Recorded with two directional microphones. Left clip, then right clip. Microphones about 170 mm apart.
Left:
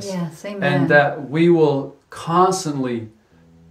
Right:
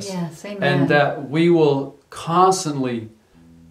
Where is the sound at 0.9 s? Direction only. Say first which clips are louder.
Left 2 dB; 20° right (ahead or behind).